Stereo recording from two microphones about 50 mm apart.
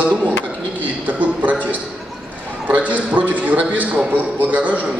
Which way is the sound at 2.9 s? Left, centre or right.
Right.